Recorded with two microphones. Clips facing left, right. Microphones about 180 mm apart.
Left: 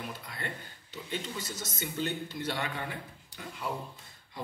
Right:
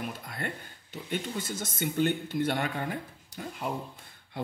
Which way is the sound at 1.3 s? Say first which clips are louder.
Right 4 dB; 55° right (ahead or behind).